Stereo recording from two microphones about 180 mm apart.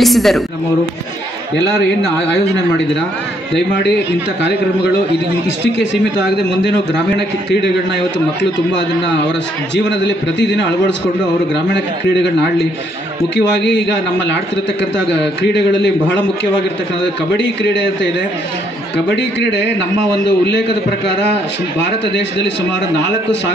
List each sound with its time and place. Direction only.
0.0 s a woman's voice: centre (ahead or behind)
9.8 s a man's voice: 80° left
15.0 s a man's voice: 75° left (ahead or behind)
17.4 s a man's voice: 75° left (ahead or behind)
19.1 s a man's voice: 75° left (ahead or behind)